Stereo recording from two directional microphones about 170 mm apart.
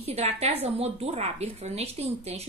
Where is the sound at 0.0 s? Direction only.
35° right (ahead or behind).